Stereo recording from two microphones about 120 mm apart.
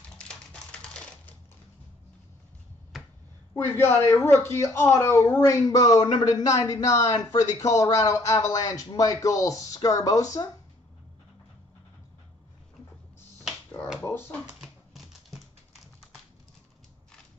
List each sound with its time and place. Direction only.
0.2 s typewriter: 10° left (ahead or behind)
3.5 s speech: 20° left (ahead or behind)
14.0 s speech: 20° left (ahead or behind)
14.6 s typing: centre (ahead or behind)